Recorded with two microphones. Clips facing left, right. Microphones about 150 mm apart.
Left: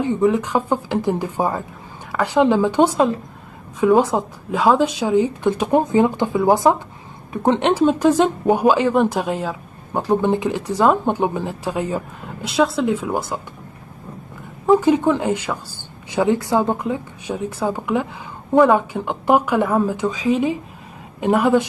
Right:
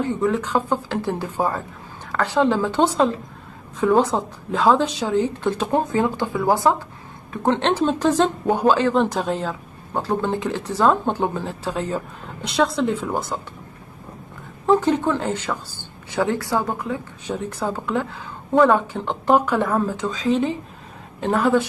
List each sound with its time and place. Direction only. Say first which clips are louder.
0.0 s speech: left 4 dB; 15° left (ahead or behind)
14.7 s speech: left 3 dB; 10° left (ahead or behind)